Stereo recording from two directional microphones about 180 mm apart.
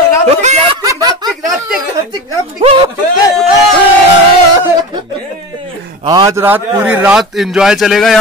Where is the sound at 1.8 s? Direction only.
20° right (ahead or behind).